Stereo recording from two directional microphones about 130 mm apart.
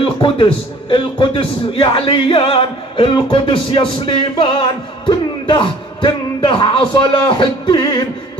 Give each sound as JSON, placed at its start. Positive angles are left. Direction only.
{"t": 0.0, "sound": "a man's voice", "side_deg": 40}